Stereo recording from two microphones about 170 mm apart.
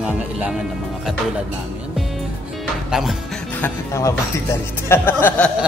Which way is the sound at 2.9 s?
Centre (ahead or behind).